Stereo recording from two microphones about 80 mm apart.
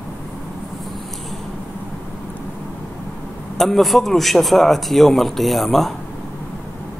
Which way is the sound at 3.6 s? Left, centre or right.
Centre.